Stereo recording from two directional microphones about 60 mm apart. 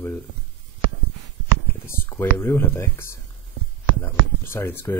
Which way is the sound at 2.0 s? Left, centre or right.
Left.